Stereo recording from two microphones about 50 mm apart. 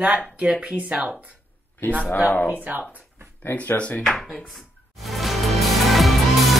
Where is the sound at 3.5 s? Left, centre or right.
Left.